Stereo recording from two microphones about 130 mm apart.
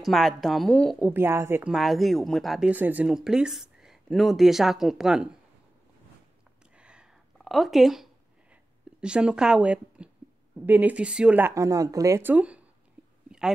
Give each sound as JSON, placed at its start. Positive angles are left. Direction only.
{"t": 0.0, "sound": "speech", "side_deg": 0}
{"t": 1.0, "sound": "a woman's voice", "side_deg": -20}
{"t": 1.7, "sound": "speech", "side_deg": 0}
{"t": 2.7, "sound": "speech", "side_deg": -10}
{"t": 6.8, "sound": "a sound", "side_deg": -10}
{"t": 7.3, "sound": "a woman's voice", "side_deg": 0}
{"t": 11.5, "sound": "speech", "side_deg": -25}